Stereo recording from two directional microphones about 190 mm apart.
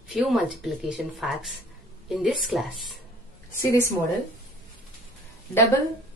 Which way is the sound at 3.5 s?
15° left (ahead or behind).